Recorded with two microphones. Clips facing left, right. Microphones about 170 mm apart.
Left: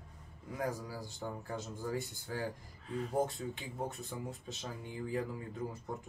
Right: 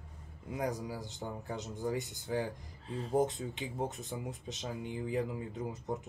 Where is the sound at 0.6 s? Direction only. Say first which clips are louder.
Right 2 dB; 20° right (ahead or behind).